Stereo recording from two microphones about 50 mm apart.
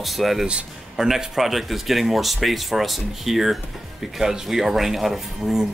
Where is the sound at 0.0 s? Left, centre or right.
Centre.